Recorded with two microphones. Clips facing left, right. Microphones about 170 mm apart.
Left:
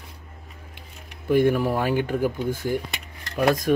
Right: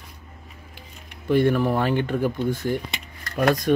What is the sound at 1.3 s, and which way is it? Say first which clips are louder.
Speech: even; 10° left (ahead or behind).